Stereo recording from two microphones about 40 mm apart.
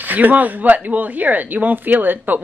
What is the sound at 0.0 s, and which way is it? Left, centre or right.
Speech, right.